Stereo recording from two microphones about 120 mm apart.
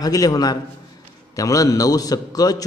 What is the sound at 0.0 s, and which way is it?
A man's voice, 30° left (ahead or behind).